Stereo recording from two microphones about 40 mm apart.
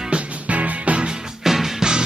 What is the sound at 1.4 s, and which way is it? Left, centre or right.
Music, centre.